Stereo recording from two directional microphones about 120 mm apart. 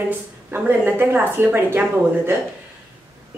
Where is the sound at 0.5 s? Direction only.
15° right (ahead or behind).